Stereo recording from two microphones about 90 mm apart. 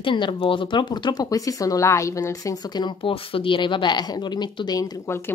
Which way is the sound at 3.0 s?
85° left.